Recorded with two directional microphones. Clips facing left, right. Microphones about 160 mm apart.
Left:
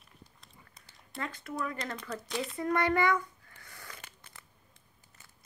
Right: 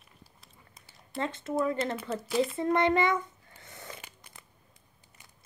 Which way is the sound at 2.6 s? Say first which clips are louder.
Right 1 dB; 25° right (ahead or behind).